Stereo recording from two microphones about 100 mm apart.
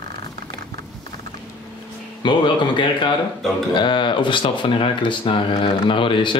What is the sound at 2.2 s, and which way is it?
Speech, 55° left (ahead or behind).